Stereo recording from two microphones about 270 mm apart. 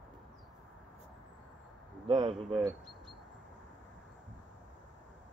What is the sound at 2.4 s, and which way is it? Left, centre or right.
Speech, centre.